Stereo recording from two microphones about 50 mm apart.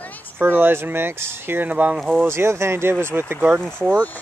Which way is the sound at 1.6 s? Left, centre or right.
Right.